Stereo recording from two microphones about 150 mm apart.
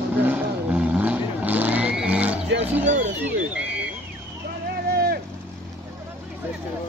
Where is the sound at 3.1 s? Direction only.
10° right (ahead or behind).